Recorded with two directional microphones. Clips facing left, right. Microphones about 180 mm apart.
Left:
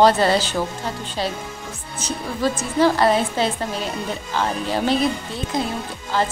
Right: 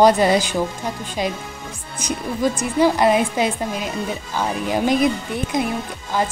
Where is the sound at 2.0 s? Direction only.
15° right (ahead or behind).